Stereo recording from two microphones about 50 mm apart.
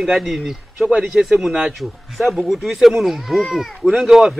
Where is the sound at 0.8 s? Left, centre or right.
Centre.